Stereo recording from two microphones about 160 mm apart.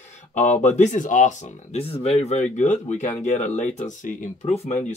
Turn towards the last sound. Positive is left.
turn(degrees=45)  # may be behind; listen again after turning